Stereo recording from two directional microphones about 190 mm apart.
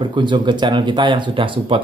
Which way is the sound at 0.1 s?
25° right (ahead or behind).